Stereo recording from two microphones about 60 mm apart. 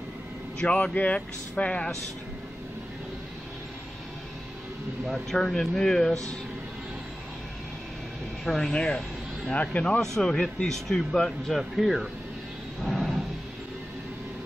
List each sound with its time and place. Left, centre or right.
0.6 s speech: centre
5.0 s speech: centre
8.5 s speech: centre
8.7 s speech: centre
12.8 s a sound: centre